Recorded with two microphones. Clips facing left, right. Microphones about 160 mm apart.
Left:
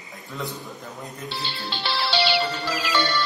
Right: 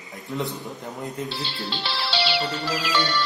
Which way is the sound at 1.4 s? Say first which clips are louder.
Left 1 dB; 50° left (ahead or behind).